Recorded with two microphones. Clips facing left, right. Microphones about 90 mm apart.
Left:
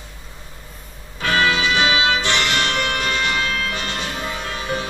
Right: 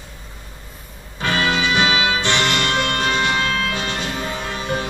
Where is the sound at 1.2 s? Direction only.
25° right (ahead or behind).